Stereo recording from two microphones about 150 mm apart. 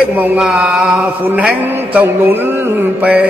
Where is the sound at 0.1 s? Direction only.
10° right (ahead or behind).